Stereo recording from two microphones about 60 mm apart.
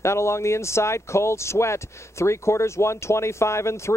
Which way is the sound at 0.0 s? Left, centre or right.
Left.